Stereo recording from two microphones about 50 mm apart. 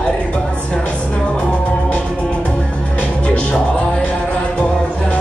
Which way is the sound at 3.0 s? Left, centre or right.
Left.